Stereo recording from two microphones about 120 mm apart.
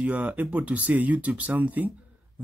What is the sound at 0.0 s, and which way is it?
Speech, 10° right (ahead or behind).